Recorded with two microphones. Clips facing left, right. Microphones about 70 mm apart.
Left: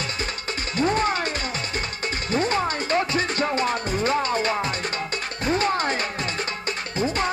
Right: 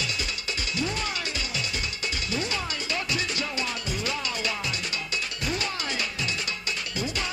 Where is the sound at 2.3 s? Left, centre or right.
Left.